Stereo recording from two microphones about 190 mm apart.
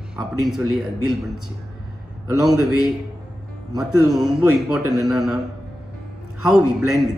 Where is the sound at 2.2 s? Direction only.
20° right (ahead or behind).